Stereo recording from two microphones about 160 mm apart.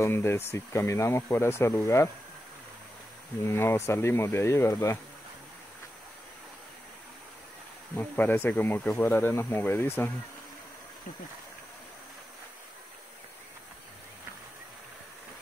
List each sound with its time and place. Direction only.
0.0 s speech: 15° left (ahead or behind)
3.4 s speech: 15° left (ahead or behind)
7.9 s speech: 10° left (ahead or behind)